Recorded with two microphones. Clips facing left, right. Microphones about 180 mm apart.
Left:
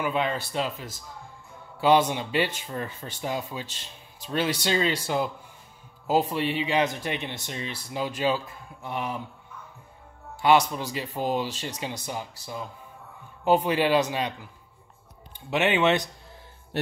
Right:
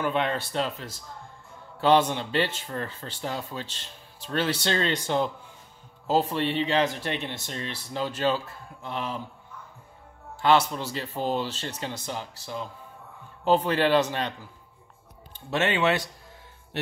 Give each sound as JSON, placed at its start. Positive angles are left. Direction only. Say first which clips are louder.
{"t": 0.0, "sound": "speech", "louder": "even", "side_deg": 5}
{"t": 10.3, "sound": "speech", "louder": "left 1 dB", "side_deg": 10}
{"t": 16.7, "sound": "a sound", "louder": "left 3 dB", "side_deg": 45}